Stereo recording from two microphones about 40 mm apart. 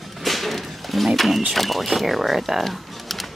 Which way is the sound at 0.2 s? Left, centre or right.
Centre.